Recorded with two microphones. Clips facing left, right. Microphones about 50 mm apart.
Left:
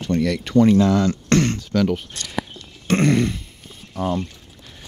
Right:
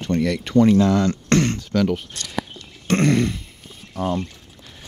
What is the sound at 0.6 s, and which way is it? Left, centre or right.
Speech, centre.